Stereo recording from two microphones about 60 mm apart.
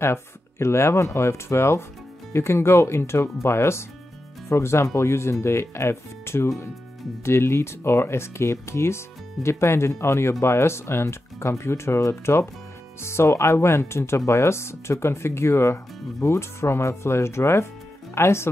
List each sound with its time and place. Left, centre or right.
0.0 s speech: left